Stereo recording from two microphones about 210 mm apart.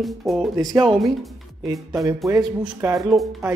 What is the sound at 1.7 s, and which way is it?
Speech, 15° right (ahead or behind).